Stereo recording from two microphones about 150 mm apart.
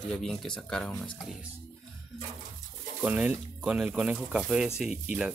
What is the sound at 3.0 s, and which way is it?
Speech, 10° right (ahead or behind).